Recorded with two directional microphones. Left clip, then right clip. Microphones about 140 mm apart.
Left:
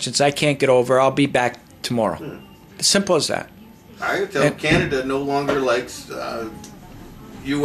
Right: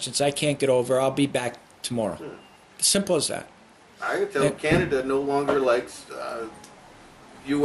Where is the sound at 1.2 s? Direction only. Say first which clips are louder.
Left 6 dB; 20° left (ahead or behind).